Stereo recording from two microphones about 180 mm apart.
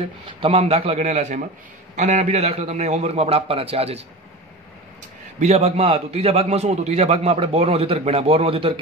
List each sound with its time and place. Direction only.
0.0 s a man's voice: 30° right (ahead or behind)
5.4 s a man's voice: 35° right (ahead or behind)